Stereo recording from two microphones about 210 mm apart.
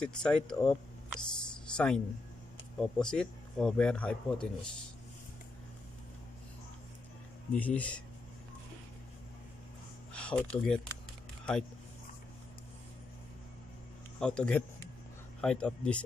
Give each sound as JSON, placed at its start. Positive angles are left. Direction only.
{"t": 0.0, "sound": "speech", "side_deg": 5}
{"t": 7.5, "sound": "speech", "side_deg": 5}
{"t": 10.1, "sound": "speech", "side_deg": 5}
{"t": 14.2, "sound": "speech", "side_deg": 5}